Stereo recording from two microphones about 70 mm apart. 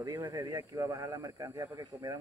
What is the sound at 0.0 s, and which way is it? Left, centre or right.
A man's voice, right.